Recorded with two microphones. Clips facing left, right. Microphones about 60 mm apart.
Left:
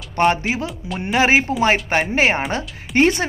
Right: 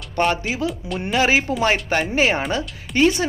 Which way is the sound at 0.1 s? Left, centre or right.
Left.